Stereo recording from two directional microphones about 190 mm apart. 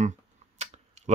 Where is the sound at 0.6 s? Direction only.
35° right (ahead or behind).